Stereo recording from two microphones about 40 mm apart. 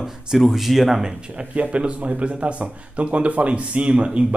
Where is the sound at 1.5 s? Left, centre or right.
Right.